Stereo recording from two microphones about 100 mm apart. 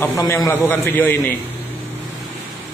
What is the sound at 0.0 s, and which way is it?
A man's voice, 20° left (ahead or behind).